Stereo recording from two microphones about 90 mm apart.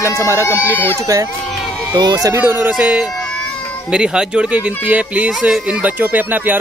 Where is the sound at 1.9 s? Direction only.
50° right (ahead or behind).